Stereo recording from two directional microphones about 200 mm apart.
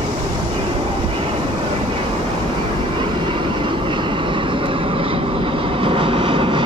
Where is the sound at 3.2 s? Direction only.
25° right (ahead or behind).